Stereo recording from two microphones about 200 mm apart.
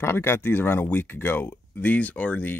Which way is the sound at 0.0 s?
10° left (ahead or behind).